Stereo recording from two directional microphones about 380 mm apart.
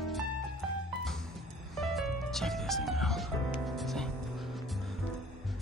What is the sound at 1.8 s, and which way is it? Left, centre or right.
Music, centre.